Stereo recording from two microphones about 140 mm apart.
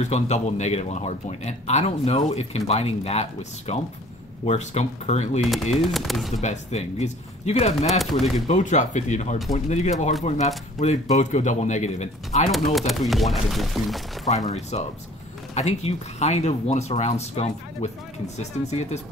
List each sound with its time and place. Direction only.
0.0 s a man's voice: 55° left (ahead or behind)
5.9 s speech: centre (ahead or behind)
6.4 s a man's voice: 55° left (ahead or behind)
8.0 s speech: centre (ahead or behind)
8.5 s a man's voice: 55° left (ahead or behind)
12.4 s speech: centre (ahead or behind)
14.5 s a man's voice: 50° left (ahead or behind)